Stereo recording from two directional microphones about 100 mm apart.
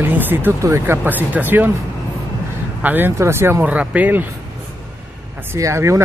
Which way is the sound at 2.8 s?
20° right (ahead or behind).